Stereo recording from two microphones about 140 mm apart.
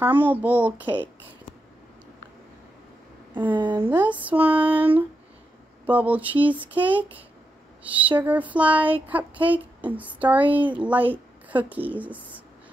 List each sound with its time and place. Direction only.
0.0 s speech: 15° right (ahead or behind)
3.5 s a woman's voice: 35° right (ahead or behind)
3.9 s speech: 10° right (ahead or behind)
8.2 s speech: 10° right (ahead or behind)